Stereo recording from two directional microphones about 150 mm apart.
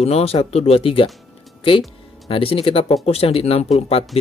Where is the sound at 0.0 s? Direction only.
45° left (ahead or behind).